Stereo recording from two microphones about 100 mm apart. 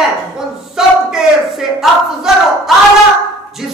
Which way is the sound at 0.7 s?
5° right (ahead or behind).